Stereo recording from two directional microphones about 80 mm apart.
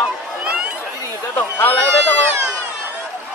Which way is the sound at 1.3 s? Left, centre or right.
Left.